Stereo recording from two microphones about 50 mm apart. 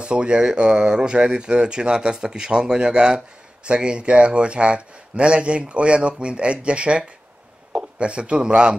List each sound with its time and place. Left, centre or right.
0.0 s a man's voice: right